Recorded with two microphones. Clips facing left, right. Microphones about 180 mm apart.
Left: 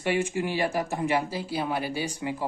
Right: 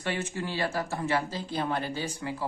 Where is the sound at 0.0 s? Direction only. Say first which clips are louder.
Left 6 dB; 15° left (ahead or behind).